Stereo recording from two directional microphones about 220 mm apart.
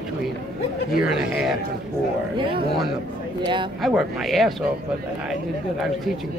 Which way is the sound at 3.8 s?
Centre (ahead or behind).